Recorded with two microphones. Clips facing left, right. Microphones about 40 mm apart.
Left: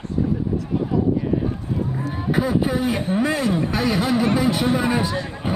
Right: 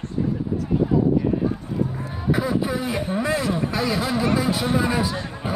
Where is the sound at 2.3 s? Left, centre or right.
Left.